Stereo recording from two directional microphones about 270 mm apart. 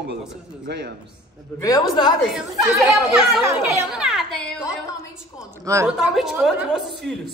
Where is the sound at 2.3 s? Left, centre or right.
Centre.